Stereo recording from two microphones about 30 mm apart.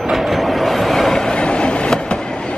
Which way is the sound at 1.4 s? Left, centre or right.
Left.